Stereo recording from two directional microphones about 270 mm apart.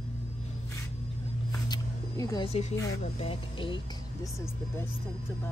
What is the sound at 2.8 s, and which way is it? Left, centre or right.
Speech, centre.